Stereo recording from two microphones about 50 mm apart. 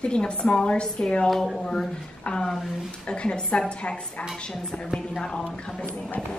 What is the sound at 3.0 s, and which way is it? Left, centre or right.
A woman's voice, left.